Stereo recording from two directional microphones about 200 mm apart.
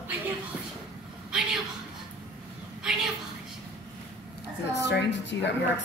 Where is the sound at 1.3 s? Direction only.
5° right (ahead or behind).